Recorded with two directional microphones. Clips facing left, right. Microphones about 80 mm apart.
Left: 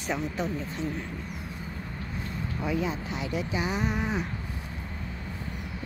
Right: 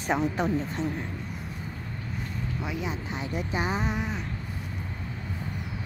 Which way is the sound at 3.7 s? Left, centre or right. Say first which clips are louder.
Even; right.